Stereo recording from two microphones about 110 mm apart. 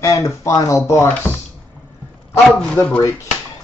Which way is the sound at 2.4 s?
10° left (ahead or behind).